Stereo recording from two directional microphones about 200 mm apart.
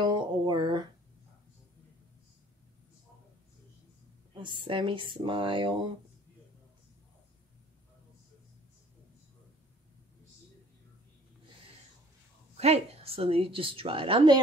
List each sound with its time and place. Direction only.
0.0 s a sound: 25° right (ahead or behind)
4.4 s a woman's voice: 25° right (ahead or behind)
12.5 s a woman's voice: 30° right (ahead or behind)